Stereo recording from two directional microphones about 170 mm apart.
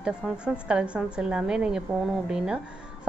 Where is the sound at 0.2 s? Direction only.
Centre (ahead or behind).